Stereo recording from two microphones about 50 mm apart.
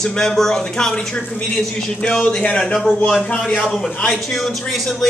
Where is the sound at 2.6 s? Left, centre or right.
Centre.